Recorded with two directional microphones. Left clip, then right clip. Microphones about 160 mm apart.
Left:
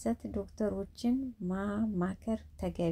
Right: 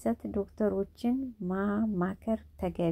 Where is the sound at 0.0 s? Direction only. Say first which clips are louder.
Right 4 dB; 20° right (ahead or behind).